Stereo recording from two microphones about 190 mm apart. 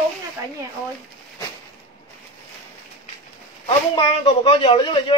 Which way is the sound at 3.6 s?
30° left (ahead or behind).